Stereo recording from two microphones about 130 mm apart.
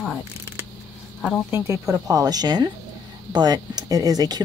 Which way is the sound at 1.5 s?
25° right (ahead or behind).